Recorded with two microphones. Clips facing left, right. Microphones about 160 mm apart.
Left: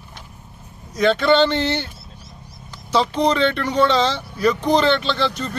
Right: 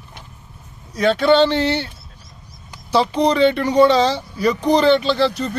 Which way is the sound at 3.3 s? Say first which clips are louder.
Right 4 dB; 5° right (ahead or behind).